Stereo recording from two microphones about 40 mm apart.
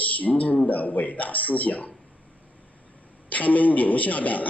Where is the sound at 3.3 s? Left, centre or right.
Left.